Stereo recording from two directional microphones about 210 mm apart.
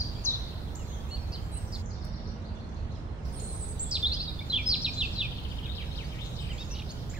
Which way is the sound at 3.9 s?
5° right (ahead or behind).